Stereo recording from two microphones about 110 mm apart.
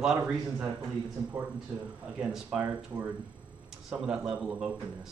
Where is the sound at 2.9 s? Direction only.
20° right (ahead or behind).